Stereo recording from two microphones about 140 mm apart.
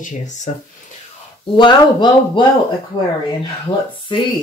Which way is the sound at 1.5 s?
35° left (ahead or behind).